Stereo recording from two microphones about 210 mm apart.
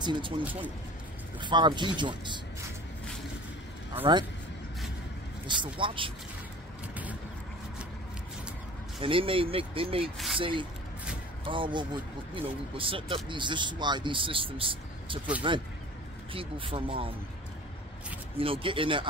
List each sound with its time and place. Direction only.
0.0 s speech: 20° right (ahead or behind)
0.4 s speech: 5° right (ahead or behind)
1.4 s speech: 20° right (ahead or behind)
4.0 s speech: 20° right (ahead or behind)
5.5 s speech: 25° right (ahead or behind)
9.0 s speech: 25° right (ahead or behind)
10.1 s speech: centre (ahead or behind)
10.4 s speech: 25° right (ahead or behind)
18.4 s speech: 25° right (ahead or behind)